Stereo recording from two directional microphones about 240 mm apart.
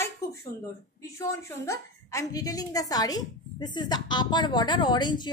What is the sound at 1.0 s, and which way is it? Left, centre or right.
A woman's voice, centre.